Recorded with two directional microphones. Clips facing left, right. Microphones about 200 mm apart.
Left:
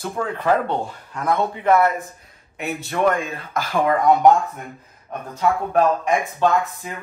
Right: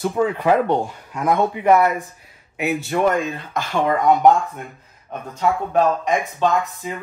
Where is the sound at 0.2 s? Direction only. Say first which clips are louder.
Right 3 dB; 15° right (ahead or behind).